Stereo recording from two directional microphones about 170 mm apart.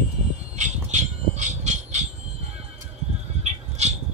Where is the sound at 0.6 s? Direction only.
45° right (ahead or behind).